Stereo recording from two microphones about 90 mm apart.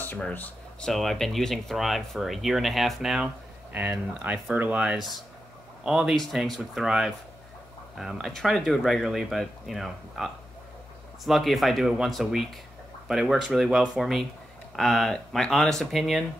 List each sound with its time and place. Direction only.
0.2 s speech: 15° left (ahead or behind)
0.8 s speech: 5° left (ahead or behind)
3.7 s speech: 20° right (ahead or behind)
4.9 s speech: centre (ahead or behind)